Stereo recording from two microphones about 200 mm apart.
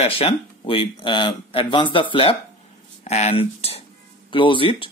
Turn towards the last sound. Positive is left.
turn(degrees=25)  # may be behind; listen again after turning